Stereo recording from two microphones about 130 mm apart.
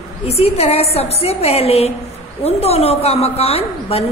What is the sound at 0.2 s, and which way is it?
A woman's voice, 50° left (ahead or behind).